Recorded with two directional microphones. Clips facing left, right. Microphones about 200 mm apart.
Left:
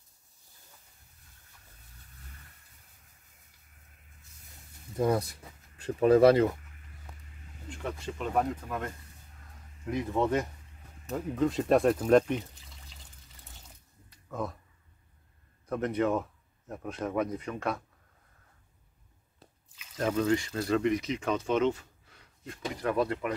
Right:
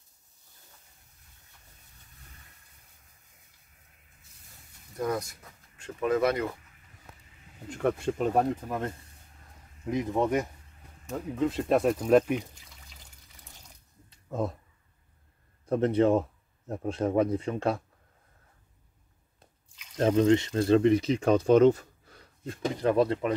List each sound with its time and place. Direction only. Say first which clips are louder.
4.9 s speech: left 3 dB; 30° left (ahead or behind)
7.7 s speech: right 9 dB; 50° right (ahead or behind)
8.3 s speech: right 1 dB; 30° right (ahead or behind); by 10.5 s 15° right (ahead or behind)
11.1 s speech: even; centre (ahead or behind)
14.1 s a sound: right 4 dB; 25° right (ahead or behind)
15.6 s speech: right 5 dB; 30° right (ahead or behind)
19.4 s drip: left 2 dB; 5° left (ahead or behind)
20.0 s speech: right 5 dB; 30° right (ahead or behind)